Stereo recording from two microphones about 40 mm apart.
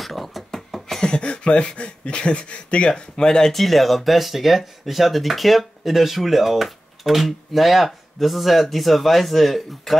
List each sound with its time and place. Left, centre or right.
0.0 s a sound: centre
1.0 s speech: left
2.9 s speech: centre
3.5 s speech: centre